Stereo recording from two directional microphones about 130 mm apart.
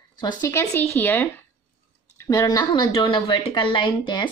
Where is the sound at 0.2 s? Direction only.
35° left (ahead or behind).